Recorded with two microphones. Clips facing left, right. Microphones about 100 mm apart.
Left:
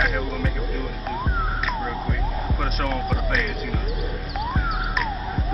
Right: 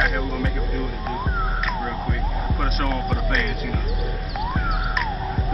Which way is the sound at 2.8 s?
Centre (ahead or behind).